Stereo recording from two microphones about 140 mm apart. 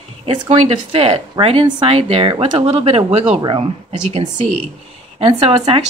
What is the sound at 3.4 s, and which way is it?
Speech, 35° right (ahead or behind).